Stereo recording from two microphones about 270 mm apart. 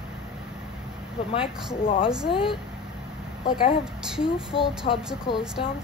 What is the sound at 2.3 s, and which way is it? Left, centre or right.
A woman's voice, centre.